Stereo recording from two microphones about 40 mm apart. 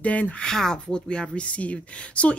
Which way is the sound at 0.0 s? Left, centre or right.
Left.